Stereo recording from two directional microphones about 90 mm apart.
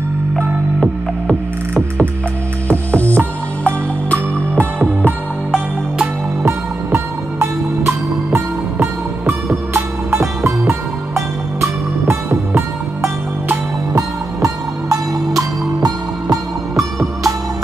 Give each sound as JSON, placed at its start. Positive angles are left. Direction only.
{"t": 2.7, "sound": "music", "side_deg": 15}
{"t": 4.6, "sound": "music", "side_deg": -20}
{"t": 13.9, "sound": "music", "side_deg": -40}